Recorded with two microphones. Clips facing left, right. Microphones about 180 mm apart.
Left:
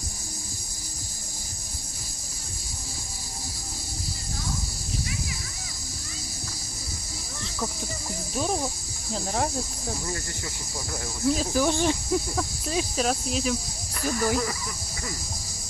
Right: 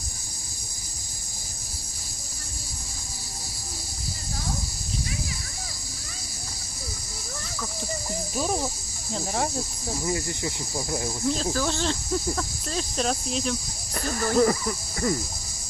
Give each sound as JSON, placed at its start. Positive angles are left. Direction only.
{"t": 9.1, "sound": "speech", "side_deg": 0}
{"t": 10.0, "sound": "speech", "side_deg": -20}
{"t": 11.2, "sound": "speech", "side_deg": 10}
{"t": 14.1, "sound": "speech", "side_deg": -45}